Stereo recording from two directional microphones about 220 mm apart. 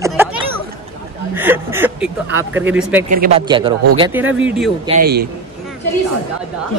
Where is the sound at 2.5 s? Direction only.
10° right (ahead or behind).